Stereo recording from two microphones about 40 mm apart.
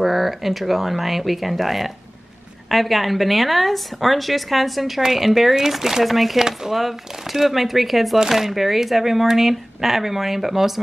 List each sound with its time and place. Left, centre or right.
0.0 s speech: centre